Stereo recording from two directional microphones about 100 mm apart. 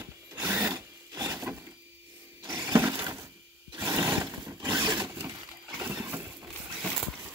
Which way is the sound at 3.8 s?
35° right (ahead or behind).